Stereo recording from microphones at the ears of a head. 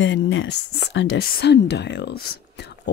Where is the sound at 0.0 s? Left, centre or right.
Left.